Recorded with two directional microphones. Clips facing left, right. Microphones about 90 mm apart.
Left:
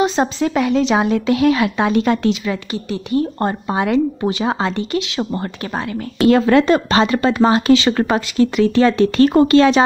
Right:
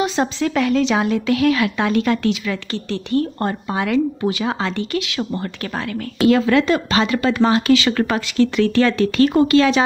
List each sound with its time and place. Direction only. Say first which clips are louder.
0.0 s speech: left 3 dB; 25° left (ahead or behind)
3.3 s speech: left 3 dB; 25° left (ahead or behind)
6.2 s speech: left 3 dB; 40° left (ahead or behind)